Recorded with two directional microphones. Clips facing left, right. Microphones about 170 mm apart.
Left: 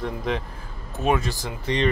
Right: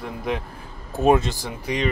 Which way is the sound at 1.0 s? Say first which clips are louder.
Right 5 dB; 30° right (ahead or behind).